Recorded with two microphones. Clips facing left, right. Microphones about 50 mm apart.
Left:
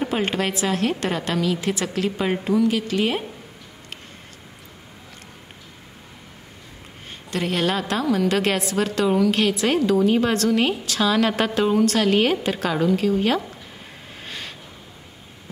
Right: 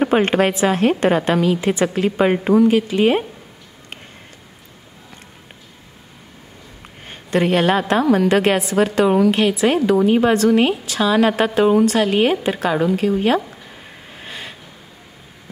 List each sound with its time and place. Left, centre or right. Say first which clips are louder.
0.0 s a woman's voice: right 8 dB; right
7.1 s a woman's voice: right 8 dB; right
8.4 s a woman's voice: right 6 dB; right
14.1 s a sound: right 2 dB; centre